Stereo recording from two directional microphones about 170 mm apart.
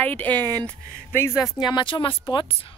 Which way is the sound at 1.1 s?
15° left (ahead or behind).